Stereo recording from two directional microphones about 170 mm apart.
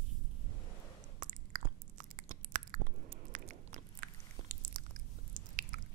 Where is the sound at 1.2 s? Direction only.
50° right (ahead or behind).